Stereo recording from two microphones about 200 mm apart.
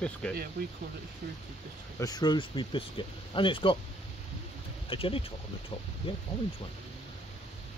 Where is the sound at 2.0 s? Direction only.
20° left (ahead or behind).